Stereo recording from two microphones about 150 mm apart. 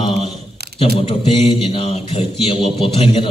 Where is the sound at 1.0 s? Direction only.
40° left (ahead or behind).